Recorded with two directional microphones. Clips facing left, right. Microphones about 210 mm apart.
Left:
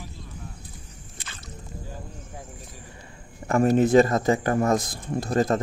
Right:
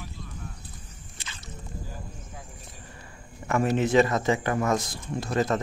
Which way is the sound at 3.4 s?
40° left (ahead or behind).